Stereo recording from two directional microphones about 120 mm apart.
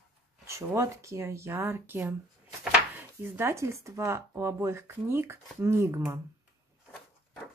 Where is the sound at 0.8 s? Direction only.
25° right (ahead or behind).